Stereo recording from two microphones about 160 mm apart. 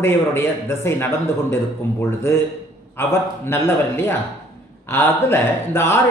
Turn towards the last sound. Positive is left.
turn(degrees=15)  # may be behind; listen again after turning